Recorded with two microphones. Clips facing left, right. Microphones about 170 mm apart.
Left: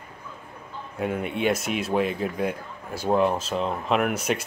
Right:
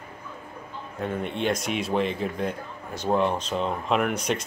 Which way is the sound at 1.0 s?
10° left (ahead or behind).